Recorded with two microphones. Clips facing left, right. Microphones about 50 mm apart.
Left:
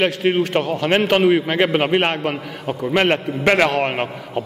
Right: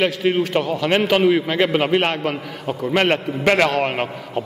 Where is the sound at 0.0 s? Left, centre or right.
Centre.